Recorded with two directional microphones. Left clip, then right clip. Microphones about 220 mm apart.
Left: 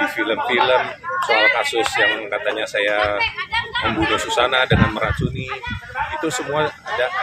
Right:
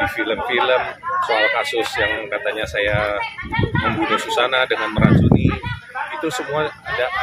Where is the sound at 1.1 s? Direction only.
45° right (ahead or behind).